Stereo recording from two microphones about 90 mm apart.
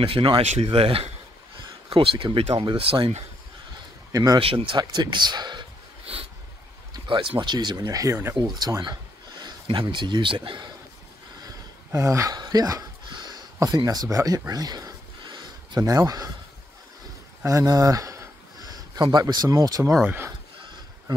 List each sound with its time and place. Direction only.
0.0 s speech: 90° right
4.1 s speech: 45° right (ahead or behind)
4.4 s speech: 90° right
4.7 s a sound: 55° right (ahead or behind); by 6.2 s 75° right (ahead or behind)
7.1 s speech: 70° right (ahead or behind)
11.9 s speech: 35° right (ahead or behind)
12.4 s speech: 45° right (ahead or behind)
13.0 s a sound: 55° right (ahead or behind)
13.8 s speech: 40° right (ahead or behind)
15.2 s a sound: 55° right (ahead or behind)
15.8 s speech: 40° right (ahead or behind)
17.5 s a sound: 40° right (ahead or behind)
19.0 s speech: 50° right (ahead or behind)